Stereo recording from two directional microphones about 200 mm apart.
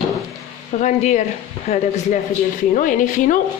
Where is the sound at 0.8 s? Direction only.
35° left (ahead or behind).